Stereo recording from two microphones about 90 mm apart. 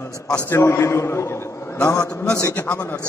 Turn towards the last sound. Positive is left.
turn(degrees=15)  # may be behind; listen again after turning